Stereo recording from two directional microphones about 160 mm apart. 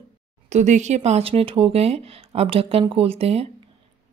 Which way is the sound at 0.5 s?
45° right (ahead or behind).